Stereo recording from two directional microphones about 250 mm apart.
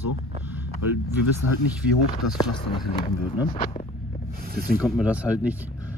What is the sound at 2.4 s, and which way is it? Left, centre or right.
Speech, centre.